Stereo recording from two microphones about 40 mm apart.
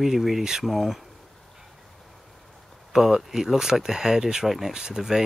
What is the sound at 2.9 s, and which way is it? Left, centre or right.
Speech, centre.